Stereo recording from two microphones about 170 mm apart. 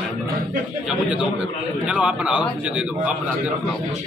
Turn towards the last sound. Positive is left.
turn(degrees=-5)  # may be behind; listen again after turning